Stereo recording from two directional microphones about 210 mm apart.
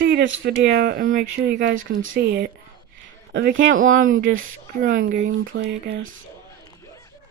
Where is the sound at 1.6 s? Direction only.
60° right (ahead or behind).